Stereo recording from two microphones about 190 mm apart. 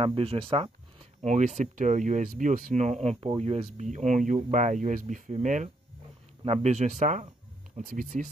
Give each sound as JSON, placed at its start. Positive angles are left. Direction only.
{"t": 0.0, "sound": "speech", "side_deg": -30}